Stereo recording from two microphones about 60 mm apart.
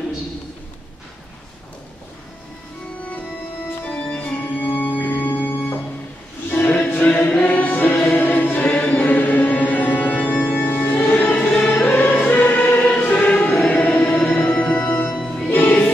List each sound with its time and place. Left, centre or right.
3.9 s organ: centre
4.6 s organ: left
6.5 s music: left
7.2 s choir: left
11.8 s music: left
15.2 s music: centre
15.5 s music: left